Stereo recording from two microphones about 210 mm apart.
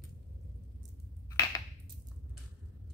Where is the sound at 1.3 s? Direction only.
15° left (ahead or behind).